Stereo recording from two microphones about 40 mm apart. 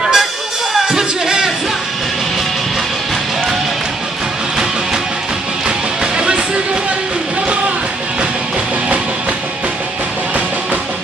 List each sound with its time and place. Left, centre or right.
0.0 s music: centre
6.1 s music: right